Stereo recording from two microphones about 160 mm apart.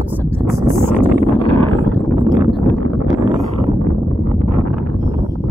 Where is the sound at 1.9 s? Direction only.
5° left (ahead or behind).